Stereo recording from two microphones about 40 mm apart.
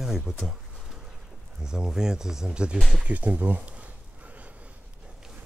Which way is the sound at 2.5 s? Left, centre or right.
Right.